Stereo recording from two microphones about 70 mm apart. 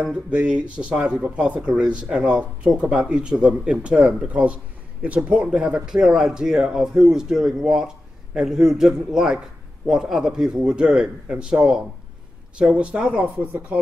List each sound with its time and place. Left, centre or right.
0.0 s speech: centre